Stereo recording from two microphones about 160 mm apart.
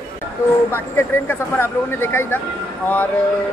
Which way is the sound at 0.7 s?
15° left (ahead or behind).